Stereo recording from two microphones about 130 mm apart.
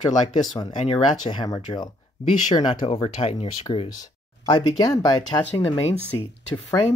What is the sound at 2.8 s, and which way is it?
Speech, 45° left (ahead or behind).